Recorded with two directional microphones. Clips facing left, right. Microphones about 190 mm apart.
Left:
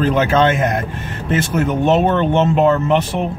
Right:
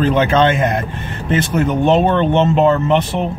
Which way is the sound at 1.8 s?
5° left (ahead or behind).